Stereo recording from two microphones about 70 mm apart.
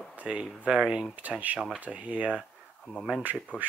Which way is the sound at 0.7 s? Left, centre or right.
Centre.